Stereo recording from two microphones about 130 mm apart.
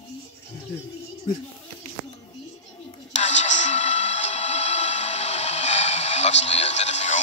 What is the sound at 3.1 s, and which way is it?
Music, 65° left (ahead or behind).